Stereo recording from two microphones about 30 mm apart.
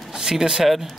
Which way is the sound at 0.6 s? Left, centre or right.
Centre.